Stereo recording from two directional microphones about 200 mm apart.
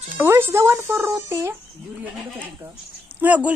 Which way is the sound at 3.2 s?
5° right (ahead or behind).